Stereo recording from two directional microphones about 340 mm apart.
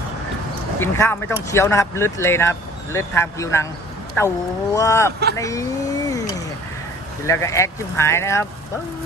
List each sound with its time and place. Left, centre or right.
0.7 s speech: centre
7.2 s speech: centre